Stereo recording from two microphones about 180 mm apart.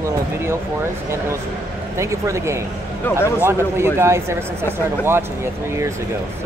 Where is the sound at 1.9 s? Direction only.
15° right (ahead or behind).